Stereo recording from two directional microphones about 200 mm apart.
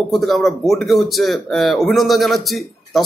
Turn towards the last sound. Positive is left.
turn(degrees=0)  # may be behind; listen again after turning